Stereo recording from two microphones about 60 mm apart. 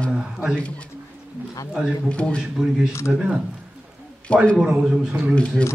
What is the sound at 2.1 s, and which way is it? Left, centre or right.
Speech, centre.